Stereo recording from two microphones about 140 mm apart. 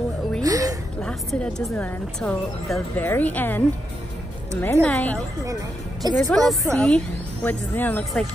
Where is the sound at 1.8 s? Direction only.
5° left (ahead or behind).